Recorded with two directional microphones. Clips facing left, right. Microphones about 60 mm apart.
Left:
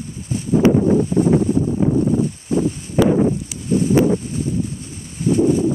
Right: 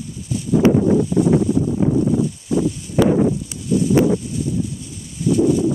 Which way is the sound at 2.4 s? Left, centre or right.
Left.